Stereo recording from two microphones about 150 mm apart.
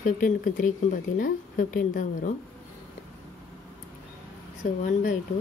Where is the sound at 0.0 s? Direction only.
70° left (ahead or behind).